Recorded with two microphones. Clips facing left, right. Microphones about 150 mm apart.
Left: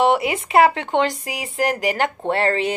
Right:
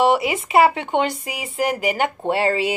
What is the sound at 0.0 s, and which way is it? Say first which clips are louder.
Speech: even; 5° right (ahead or behind).